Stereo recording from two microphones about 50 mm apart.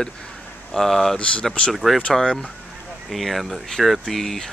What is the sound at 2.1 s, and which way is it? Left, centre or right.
Speech, centre.